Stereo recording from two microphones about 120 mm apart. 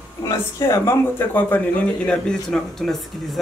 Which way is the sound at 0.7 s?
20° left (ahead or behind).